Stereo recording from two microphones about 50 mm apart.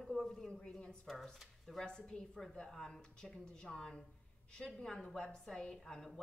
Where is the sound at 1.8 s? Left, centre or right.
Centre.